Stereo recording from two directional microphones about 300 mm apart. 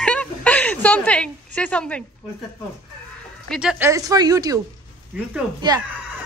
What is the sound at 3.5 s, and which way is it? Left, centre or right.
A woman's voice, centre.